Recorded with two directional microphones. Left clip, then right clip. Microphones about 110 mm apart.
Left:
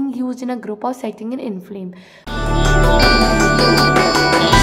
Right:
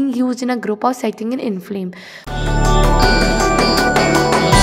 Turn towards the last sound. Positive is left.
turn(degrees=0)  # may be behind; listen again after turning